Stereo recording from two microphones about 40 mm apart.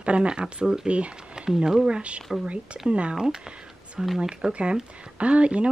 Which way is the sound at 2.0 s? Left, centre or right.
Right.